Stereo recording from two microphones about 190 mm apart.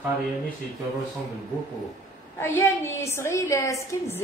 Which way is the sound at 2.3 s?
15° left (ahead or behind).